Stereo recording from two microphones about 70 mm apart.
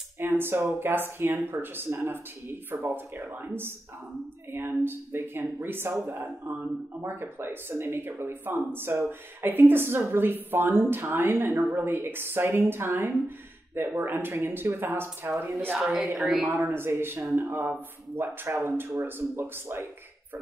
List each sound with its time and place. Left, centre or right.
0.2 s speech: right
15.8 s a woman's voice: centre
16.6 s speech: right